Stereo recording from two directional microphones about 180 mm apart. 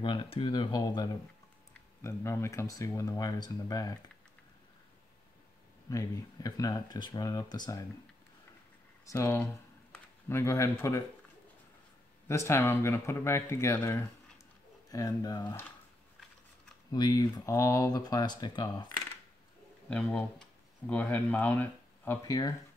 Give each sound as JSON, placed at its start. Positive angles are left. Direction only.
{"t": 0.0, "sound": "speech", "side_deg": 25}
{"t": 5.9, "sound": "speech", "side_deg": 20}
{"t": 9.0, "sound": "speech", "side_deg": 15}
{"t": 12.3, "sound": "speech", "side_deg": 15}
{"t": 16.9, "sound": "speech", "side_deg": 20}
{"t": 19.9, "sound": "speech", "side_deg": 5}